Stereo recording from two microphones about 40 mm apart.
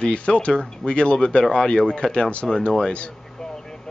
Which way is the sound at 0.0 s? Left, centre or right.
Left.